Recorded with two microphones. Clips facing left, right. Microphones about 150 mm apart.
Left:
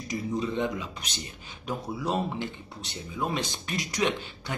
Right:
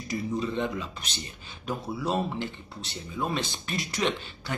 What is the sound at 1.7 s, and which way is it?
Speech, 15° left (ahead or behind).